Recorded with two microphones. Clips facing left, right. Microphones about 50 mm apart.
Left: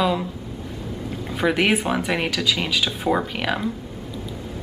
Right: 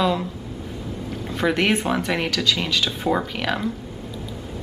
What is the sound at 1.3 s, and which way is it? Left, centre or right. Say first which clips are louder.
Speech: left 1 dB; centre.